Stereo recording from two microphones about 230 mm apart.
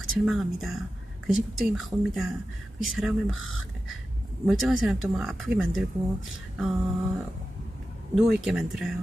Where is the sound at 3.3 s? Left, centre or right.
Left.